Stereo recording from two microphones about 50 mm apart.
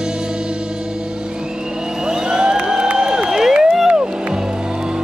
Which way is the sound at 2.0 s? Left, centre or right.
Centre.